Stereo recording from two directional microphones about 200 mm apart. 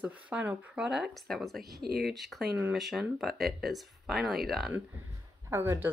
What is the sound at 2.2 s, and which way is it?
Speech, centre (ahead or behind).